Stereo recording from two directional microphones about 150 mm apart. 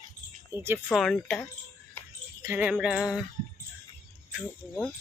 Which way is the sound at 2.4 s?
15° right (ahead or behind).